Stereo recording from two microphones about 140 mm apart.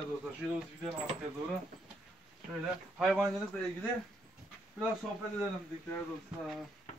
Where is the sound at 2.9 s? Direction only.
5° right (ahead or behind).